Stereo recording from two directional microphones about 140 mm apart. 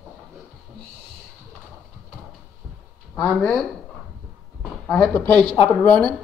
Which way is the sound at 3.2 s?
5° left (ahead or behind).